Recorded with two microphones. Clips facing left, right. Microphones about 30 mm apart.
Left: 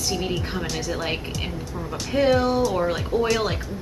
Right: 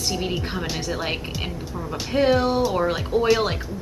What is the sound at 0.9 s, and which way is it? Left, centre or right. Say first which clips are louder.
Speech: even; centre.